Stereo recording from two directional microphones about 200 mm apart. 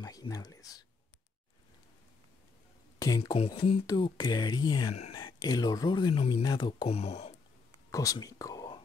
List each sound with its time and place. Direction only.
0.0 s whispering: 20° left (ahead or behind)
3.0 s speech: 20° left (ahead or behind)
7.9 s whispering: 15° left (ahead or behind)